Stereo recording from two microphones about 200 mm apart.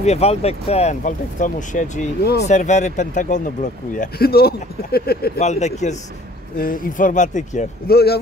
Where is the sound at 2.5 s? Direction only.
35° left (ahead or behind); by 5.4 s 50° left (ahead or behind).